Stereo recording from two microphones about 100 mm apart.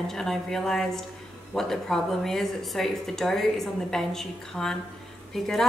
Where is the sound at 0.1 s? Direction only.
5° left (ahead or behind).